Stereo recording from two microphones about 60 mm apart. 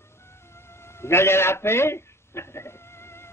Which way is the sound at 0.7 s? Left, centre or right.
Left.